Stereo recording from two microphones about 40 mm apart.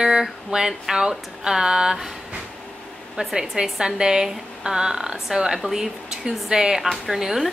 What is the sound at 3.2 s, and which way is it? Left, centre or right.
Speech, right.